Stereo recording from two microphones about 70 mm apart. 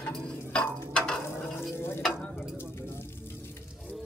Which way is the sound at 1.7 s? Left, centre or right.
Left.